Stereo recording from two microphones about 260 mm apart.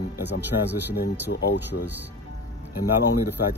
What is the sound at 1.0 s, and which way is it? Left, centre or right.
Speech, left.